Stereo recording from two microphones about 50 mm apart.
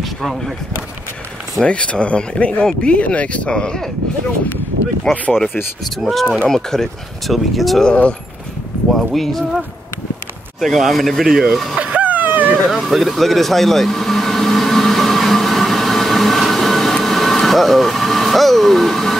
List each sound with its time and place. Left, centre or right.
1.6 s speech: left
5.1 s speech: centre
6.4 s speech: centre
7.8 s speech: left
8.9 s speech: centre
10.6 s speech: centre
11.8 s vehicle: right
12.6 s vehicle: centre